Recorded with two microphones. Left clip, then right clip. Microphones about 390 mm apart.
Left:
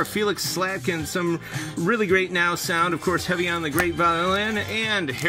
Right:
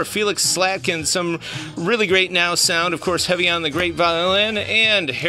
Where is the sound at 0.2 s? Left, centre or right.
Centre.